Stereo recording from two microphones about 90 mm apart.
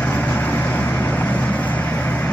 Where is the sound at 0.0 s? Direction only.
20° left (ahead or behind).